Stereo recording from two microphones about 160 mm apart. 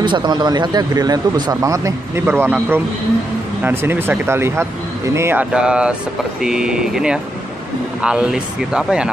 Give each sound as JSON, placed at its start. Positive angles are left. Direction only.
{"t": 0.0, "sound": "speech", "side_deg": -30}